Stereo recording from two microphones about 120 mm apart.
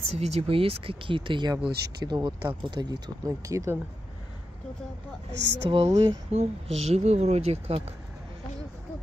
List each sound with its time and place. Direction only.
0.2 s speech: 60° right (ahead or behind); by 3.7 s 25° right (ahead or behind)
5.7 s speech: 50° right (ahead or behind)